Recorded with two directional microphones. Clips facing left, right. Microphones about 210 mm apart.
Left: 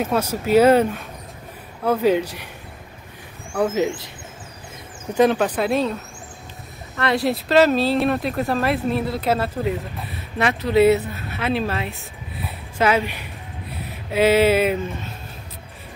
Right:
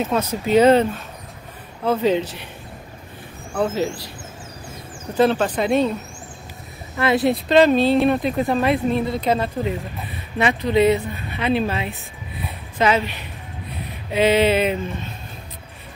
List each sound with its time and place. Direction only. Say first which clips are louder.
0.0 s speech: even; 10° left (ahead or behind)
1.9 s speech: left 1 dB; 10° left (ahead or behind)
3.5 s speech: left 1 dB; 15° left (ahead or behind)
5.1 s speech: even; 10° left (ahead or behind)
7.0 s speech: right 3 dB; centre (ahead or behind)